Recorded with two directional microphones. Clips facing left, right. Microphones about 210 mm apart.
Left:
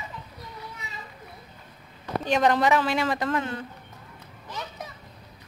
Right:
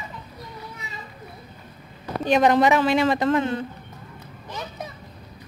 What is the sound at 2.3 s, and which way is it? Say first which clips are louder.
A woman's voice: right 4 dB; 15° right (ahead or behind).